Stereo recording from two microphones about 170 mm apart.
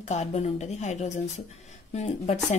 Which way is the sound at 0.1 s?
40° left (ahead or behind).